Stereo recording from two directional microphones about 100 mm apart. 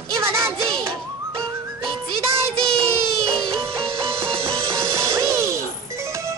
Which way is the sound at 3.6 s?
25° right (ahead or behind).